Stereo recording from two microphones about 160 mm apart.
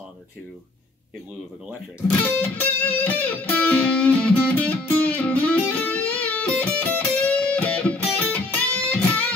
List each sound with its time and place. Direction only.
2.5 s music: 10° left (ahead or behind)